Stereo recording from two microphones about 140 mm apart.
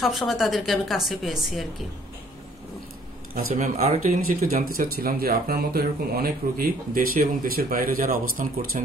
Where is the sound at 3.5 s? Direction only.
75° right (ahead or behind).